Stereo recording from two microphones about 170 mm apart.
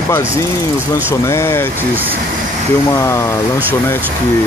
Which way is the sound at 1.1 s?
15° left (ahead or behind).